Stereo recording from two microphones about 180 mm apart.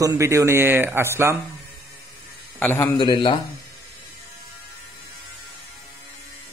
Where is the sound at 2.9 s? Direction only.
25° left (ahead or behind).